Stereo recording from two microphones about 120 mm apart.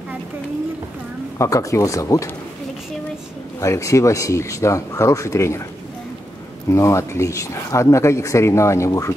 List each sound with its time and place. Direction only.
1.4 s speech: 25° left (ahead or behind)
3.5 s speech: 25° left (ahead or behind)
6.7 s speech: 25° left (ahead or behind)